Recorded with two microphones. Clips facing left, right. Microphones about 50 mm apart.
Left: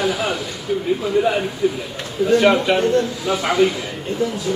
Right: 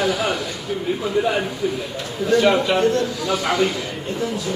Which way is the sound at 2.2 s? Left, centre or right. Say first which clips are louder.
Left 2 dB; left.